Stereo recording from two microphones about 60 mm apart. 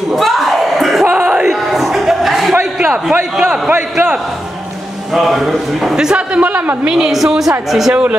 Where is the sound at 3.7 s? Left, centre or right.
Right.